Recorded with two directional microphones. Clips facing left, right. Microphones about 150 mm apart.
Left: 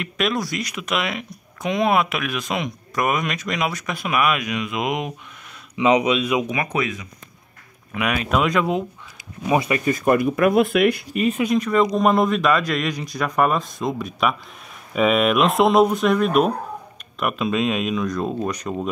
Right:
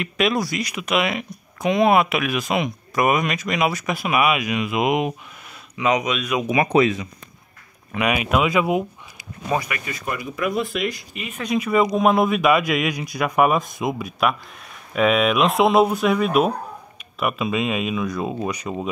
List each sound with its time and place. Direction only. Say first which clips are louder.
0.0 s speech: right 2 dB; centre (ahead or behind)
5.8 s speech: left 4 dB; 30° left (ahead or behind)
6.5 s speech: right 7 dB; 25° right (ahead or behind)
8.1 s a man's voice: even; 10° right (ahead or behind)
9.5 s speech: left 3 dB; 10° left (ahead or behind)
9.8 s speech: left 11 dB; 50° left (ahead or behind)
11.5 s a man's voice: right 4 dB; 10° right (ahead or behind)